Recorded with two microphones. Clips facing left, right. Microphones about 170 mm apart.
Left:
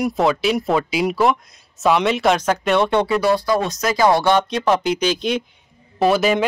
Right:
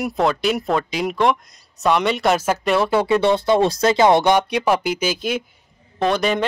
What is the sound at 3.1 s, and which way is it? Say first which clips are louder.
Speech: right 1 dB; 25° right (ahead or behind).